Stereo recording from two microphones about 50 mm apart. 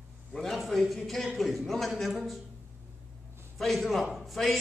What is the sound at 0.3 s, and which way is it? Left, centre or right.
A man's voice, centre.